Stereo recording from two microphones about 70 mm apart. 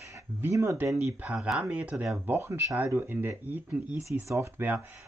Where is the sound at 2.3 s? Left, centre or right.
Right.